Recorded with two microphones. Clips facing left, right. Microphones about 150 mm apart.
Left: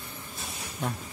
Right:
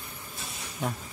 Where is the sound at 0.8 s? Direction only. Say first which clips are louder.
Right 1 dB; centre (ahead or behind).